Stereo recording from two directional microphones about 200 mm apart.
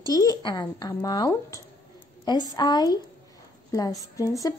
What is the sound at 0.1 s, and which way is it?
A woman's voice, 20° left (ahead or behind).